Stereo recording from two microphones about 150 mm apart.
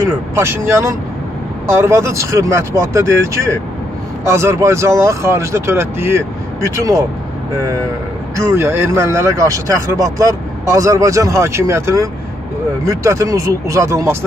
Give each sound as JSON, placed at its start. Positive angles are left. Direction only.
{"t": 0.0, "sound": "speech", "side_deg": -20}
{"t": 8.4, "sound": "speech", "side_deg": -20}